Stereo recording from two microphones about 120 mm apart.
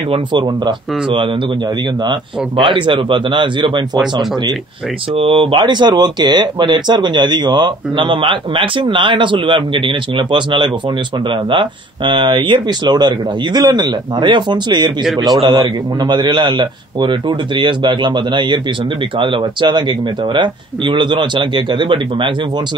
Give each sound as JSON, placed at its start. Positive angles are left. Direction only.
{"t": 0.3, "sound": "speech", "side_deg": -40}
{"t": 5.1, "sound": "speech", "side_deg": -50}